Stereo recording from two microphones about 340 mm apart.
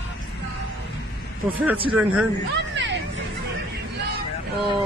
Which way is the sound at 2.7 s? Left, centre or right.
Right.